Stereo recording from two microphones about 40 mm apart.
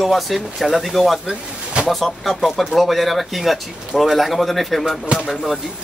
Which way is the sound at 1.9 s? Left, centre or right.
Centre.